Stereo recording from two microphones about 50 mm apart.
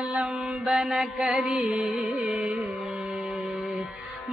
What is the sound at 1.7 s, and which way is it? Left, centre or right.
Carnatic music, centre.